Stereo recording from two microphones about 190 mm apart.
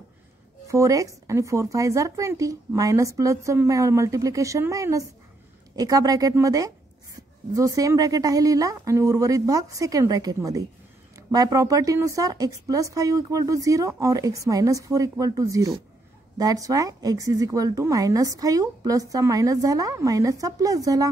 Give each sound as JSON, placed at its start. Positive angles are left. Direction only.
{"t": 0.7, "sound": "a woman's voice", "side_deg": -15}